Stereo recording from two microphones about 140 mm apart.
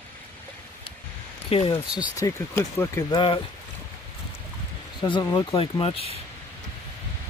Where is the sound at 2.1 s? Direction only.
20° left (ahead or behind).